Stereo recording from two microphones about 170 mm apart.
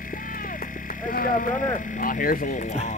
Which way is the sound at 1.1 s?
55° left (ahead or behind).